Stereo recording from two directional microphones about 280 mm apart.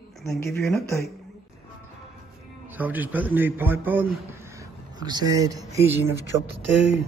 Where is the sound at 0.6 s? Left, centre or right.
Centre.